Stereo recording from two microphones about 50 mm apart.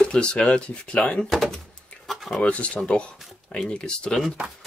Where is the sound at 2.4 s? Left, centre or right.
Left.